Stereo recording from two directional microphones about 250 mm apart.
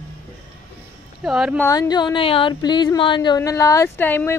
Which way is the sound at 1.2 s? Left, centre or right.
Centre.